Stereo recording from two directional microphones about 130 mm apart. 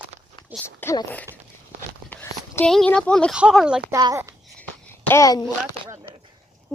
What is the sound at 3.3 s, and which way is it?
Speech, 5° right (ahead or behind).